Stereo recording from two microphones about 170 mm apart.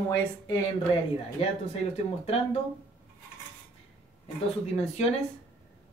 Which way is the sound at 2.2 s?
35° left (ahead or behind).